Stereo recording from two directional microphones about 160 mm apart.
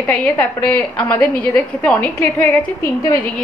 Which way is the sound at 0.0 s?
10° left (ahead or behind).